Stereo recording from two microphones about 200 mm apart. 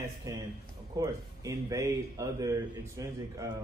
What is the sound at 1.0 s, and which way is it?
Speech, 15° right (ahead or behind).